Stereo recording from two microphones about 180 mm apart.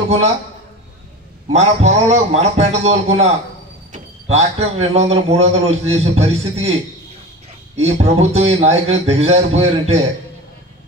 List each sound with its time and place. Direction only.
1.5 s a man's voice: 40° right (ahead or behind)
7.7 s a man's voice: 35° right (ahead or behind)